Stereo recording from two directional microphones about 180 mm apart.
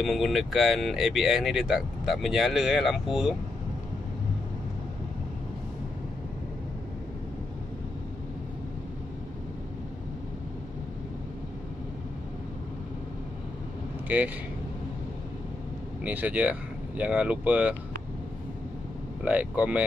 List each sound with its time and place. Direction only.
0.0 s speech: centre (ahead or behind)
14.0 s speech: 10° right (ahead or behind)
16.0 s speech: 10° right (ahead or behind)
19.2 s speech: 10° right (ahead or behind)